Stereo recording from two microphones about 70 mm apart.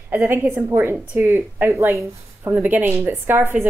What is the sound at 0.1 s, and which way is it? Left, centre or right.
Speech, right.